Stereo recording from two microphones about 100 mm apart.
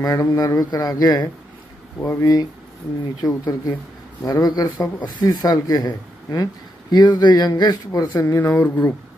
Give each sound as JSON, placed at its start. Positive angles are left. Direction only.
{"t": 0.0, "sound": "speech", "side_deg": 35}